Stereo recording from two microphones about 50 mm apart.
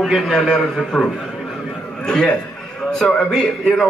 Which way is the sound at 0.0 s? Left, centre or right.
Centre.